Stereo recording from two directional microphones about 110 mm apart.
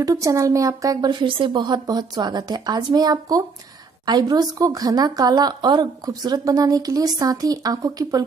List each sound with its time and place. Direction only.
0.0 s a woman's voice: 30° right (ahead or behind)
1.2 s a woman's voice: 50° right (ahead or behind); by 8.2 s 35° right (ahead or behind)